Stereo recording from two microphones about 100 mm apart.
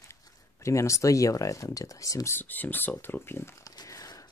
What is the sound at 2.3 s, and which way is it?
Speech, 20° left (ahead or behind).